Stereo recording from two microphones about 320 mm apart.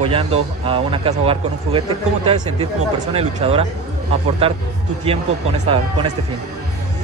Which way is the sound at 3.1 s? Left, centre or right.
Centre.